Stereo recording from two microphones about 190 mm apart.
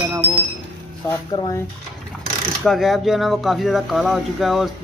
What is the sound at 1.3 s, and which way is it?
Speech, 25° left (ahead or behind).